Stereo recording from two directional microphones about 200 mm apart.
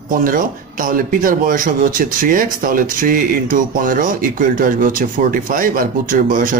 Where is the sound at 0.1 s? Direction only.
40° right (ahead or behind).